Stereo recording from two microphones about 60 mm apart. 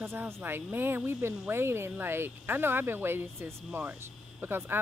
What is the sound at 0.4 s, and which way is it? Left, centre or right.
Speech, right.